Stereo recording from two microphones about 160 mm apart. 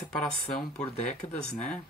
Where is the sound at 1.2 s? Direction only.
40° left (ahead or behind).